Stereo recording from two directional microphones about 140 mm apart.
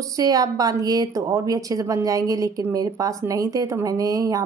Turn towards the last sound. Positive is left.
turn(degrees=-25)  # may be behind; listen again after turning